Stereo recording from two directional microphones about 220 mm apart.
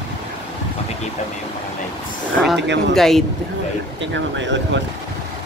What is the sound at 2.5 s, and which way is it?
Speech, 50° right (ahead or behind).